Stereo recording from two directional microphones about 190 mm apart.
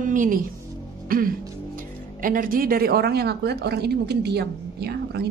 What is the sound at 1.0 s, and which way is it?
Music, 50° right (ahead or behind).